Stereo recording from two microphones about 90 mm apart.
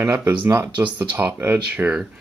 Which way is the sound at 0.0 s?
25° right (ahead or behind).